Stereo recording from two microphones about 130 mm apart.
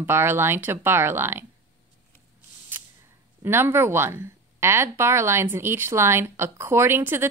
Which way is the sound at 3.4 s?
15° right (ahead or behind).